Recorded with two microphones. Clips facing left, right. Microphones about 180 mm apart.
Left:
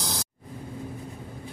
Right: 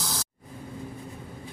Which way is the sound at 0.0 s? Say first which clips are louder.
Left 2 dB; 15° left (ahead or behind).